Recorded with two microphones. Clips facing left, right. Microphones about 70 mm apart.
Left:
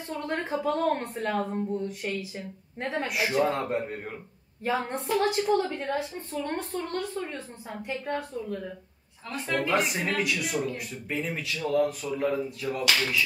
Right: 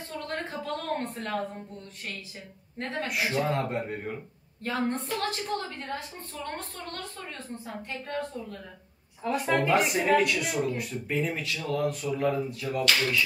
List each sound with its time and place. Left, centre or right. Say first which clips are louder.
0.2 s a woman's voice: left 6 dB; centre
2.9 s speech: left 2 dB; centre
4.6 s a woman's voice: left 2 dB; centre
6.3 s a woman's voice: left 6 dB; left
9.2 s a woman's voice: right 5 dB; centre
9.6 s speech: left 1 dB; centre